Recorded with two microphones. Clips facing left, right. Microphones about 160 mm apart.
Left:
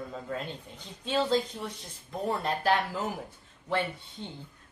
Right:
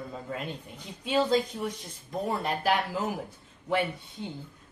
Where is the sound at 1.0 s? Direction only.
10° right (ahead or behind).